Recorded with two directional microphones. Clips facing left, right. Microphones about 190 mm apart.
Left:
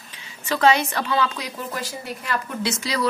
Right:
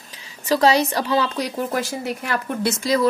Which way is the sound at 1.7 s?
70° right (ahead or behind).